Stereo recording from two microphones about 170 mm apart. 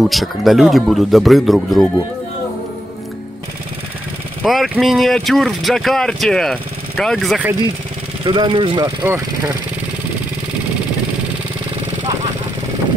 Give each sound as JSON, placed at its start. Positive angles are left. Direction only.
{"t": 0.0, "sound": "speech", "side_deg": 0}
{"t": 4.4, "sound": "speech", "side_deg": 0}
{"t": 8.3, "sound": "speech", "side_deg": -30}
{"t": 9.0, "sound": "speech", "side_deg": -15}